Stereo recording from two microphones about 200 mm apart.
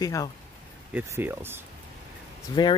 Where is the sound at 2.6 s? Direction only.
25° left (ahead or behind).